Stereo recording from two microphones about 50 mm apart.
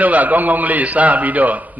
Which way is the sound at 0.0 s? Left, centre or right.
Right.